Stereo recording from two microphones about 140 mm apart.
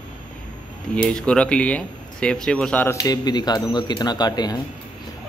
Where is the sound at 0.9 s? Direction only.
5° left (ahead or behind).